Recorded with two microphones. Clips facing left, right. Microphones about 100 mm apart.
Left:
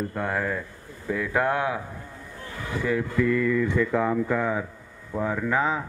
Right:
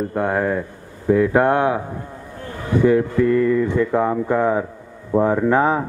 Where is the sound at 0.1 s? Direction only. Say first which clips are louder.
Right 8 dB; 25° right (ahead or behind).